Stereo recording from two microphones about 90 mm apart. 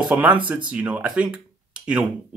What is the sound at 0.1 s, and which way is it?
Speech, 15° right (ahead or behind).